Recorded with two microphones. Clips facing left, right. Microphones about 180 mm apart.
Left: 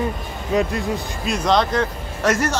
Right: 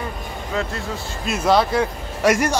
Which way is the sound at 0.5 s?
20° left (ahead or behind).